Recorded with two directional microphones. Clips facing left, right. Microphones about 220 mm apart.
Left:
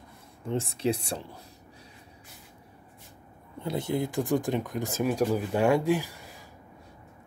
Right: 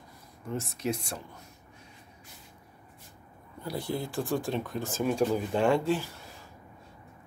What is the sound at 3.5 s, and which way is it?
Speech, 25° left (ahead or behind).